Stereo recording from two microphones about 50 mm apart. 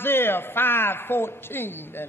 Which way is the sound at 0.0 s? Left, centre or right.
Left.